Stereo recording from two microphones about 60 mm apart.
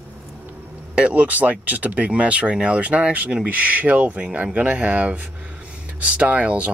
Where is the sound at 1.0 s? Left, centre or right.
Right.